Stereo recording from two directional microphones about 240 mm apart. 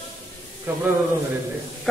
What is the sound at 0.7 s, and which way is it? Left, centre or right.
Speech, centre.